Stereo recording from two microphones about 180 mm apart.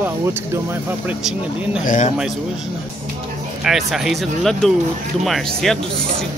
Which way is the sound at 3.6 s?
Centre (ahead or behind).